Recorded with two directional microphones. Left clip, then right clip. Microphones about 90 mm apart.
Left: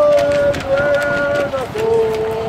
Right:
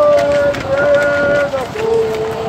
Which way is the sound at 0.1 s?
20° left (ahead or behind).